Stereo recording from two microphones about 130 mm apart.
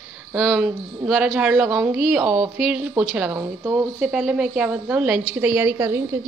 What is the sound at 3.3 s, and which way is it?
Speech, 20° right (ahead or behind).